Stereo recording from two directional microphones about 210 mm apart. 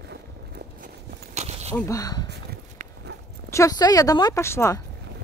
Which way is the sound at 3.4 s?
15° left (ahead or behind).